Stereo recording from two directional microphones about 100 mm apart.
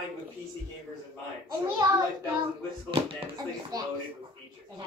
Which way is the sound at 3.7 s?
40° right (ahead or behind).